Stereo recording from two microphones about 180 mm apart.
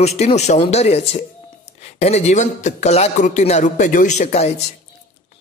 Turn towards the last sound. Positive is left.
turn(degrees=40)  # may be behind; listen again after turning